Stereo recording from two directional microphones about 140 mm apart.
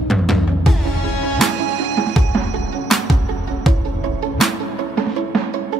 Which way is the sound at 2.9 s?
Centre (ahead or behind).